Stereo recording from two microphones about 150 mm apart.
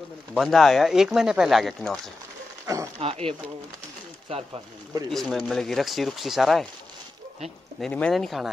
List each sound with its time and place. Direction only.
0.3 s speech: centre (ahead or behind)
2.6 s dog: 20° right (ahead or behind)
3.0 s speech: 40° right (ahead or behind)
5.1 s speech: centre (ahead or behind)
7.8 s speech: 5° left (ahead or behind)